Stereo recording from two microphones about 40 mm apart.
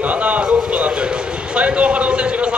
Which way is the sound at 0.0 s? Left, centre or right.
Right.